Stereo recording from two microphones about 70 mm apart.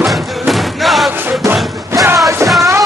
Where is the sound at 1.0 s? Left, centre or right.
Right.